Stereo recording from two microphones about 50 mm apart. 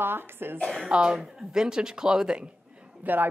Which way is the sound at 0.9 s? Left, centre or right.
Centre.